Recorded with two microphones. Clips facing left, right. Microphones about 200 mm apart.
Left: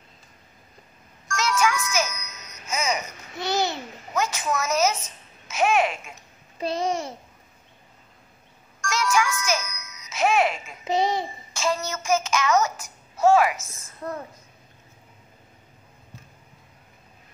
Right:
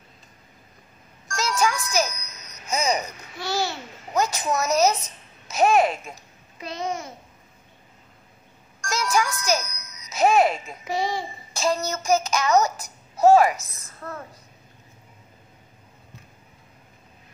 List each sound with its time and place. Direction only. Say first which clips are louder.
1.3 s music: even; 35° right (ahead or behind)
3.3 s babbling: left 2 dB; 20° left (ahead or behind)
4.1 s a sound: right 2 dB; 35° right (ahead or behind)
5.5 s babbling: right 3 dB; 35° right (ahead or behind)
6.6 s a child's voice: left 4 dB; 30° left (ahead or behind)
8.8 s music: even; 35° right (ahead or behind)
10.9 s a child's voice: left 3 dB; 20° left (ahead or behind)
11.5 s child singing: right 2 dB; 35° right (ahead or behind)